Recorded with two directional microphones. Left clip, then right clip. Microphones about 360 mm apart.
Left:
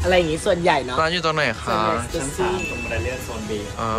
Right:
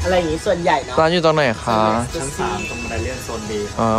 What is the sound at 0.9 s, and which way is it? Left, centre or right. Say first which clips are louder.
Speech: right 5 dB; centre.